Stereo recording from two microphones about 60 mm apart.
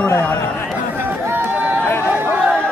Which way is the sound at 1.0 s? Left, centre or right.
Right.